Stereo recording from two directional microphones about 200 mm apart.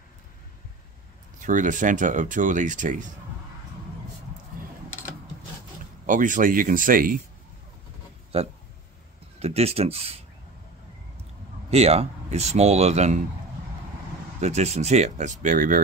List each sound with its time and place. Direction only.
1.4 s speech: 40° right (ahead or behind)
6.0 s speech: 40° right (ahead or behind)
8.3 s speech: 30° right (ahead or behind)
11.7 s speech: 30° right (ahead or behind)
14.4 s speech: 35° right (ahead or behind)